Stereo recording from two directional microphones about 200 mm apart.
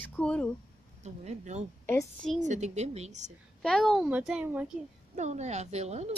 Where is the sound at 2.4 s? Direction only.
35° right (ahead or behind).